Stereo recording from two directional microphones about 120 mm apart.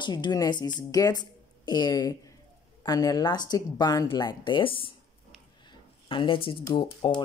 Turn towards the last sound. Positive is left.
turn(degrees=40)  # may be behind; listen again after turning